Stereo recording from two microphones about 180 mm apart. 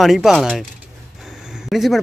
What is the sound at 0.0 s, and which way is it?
Speech, centre (ahead or behind).